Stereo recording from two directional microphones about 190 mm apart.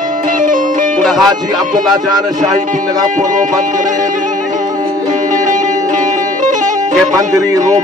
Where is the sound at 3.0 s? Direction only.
40° right (ahead or behind).